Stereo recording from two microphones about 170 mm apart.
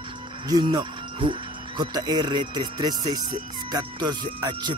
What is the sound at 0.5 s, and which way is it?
Speech, 25° right (ahead or behind).